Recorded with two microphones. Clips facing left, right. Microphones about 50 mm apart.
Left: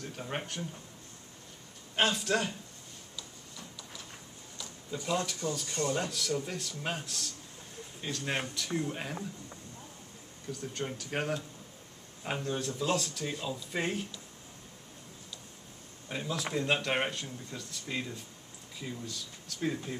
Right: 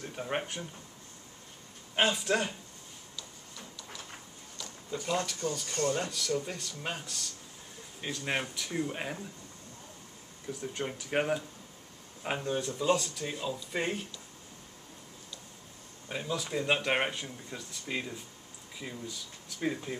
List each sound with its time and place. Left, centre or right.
0.0 s speech: centre
2.0 s speech: centre
5.0 s speech: centre
5.7 s speech: left
5.9 s speech: centre
8.0 s speech: centre
10.5 s speech: centre
16.1 s speech: centre